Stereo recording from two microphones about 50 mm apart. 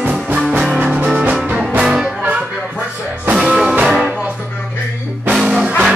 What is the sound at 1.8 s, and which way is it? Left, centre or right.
Music, centre.